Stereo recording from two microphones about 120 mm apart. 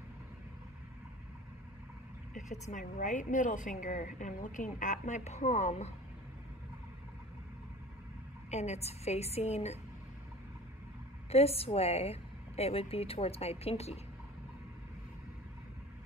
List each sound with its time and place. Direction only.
2.3 s a woman's voice: 80° left
8.5 s a woman's voice: 65° left (ahead or behind)
11.2 s a woman's voice: 60° left (ahead or behind)